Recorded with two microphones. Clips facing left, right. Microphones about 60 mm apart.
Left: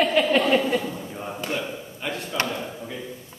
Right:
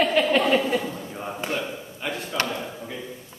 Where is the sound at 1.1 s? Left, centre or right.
Centre.